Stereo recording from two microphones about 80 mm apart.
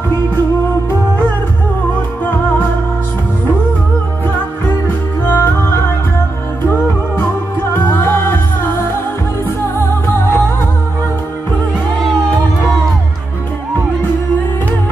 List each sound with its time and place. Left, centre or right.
2.2 s music: left
4.8 s music: left
7.7 s music: left